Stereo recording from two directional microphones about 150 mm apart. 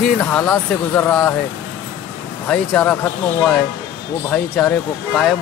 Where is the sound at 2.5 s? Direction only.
10° left (ahead or behind).